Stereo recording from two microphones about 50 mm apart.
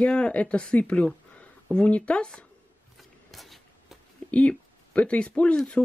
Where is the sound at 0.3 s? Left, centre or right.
Left.